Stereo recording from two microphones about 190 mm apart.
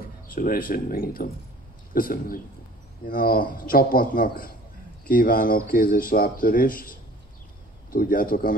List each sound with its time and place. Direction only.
0.3 s a man's voice: 50° left (ahead or behind)